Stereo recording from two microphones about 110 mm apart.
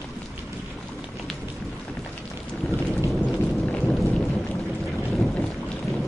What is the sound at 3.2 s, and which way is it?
Thunder, 15° left (ahead or behind).